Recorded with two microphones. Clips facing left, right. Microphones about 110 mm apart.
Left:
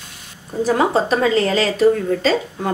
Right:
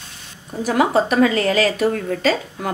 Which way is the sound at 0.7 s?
30° left (ahead or behind).